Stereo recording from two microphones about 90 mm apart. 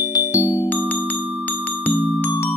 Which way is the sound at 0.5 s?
20° left (ahead or behind).